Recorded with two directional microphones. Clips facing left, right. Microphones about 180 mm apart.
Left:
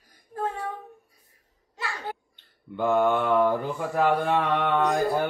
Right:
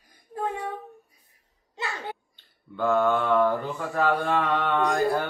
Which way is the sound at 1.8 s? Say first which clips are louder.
Right 1 dB; 20° right (ahead or behind).